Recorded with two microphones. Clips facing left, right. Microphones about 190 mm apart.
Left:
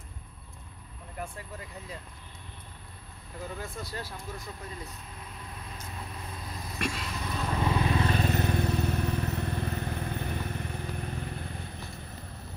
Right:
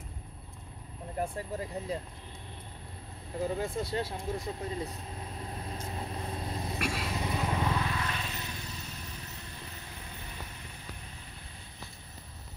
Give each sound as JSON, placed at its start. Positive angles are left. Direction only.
{"t": 1.1, "sound": "speech", "side_deg": -35}
{"t": 3.3, "sound": "vehicle", "side_deg": -30}
{"t": 6.8, "sound": "vehicle", "side_deg": -5}
{"t": 7.1, "sound": "vehicle", "side_deg": -25}
{"t": 7.8, "sound": "vehicle", "side_deg": 30}
{"t": 8.2, "sound": "vehicle", "side_deg": 55}